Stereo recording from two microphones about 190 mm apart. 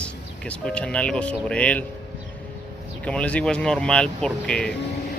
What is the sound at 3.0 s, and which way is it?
Speech, 5° left (ahead or behind).